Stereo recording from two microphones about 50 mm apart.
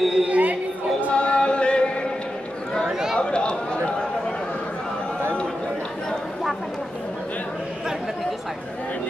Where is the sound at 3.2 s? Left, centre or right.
Left.